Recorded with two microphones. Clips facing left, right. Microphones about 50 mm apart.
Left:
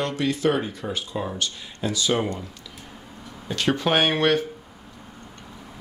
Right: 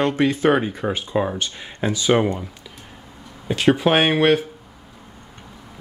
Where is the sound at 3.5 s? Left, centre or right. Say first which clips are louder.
Right 6 dB; centre.